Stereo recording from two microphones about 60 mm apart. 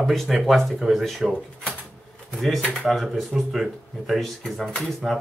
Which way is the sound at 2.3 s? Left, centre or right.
Centre.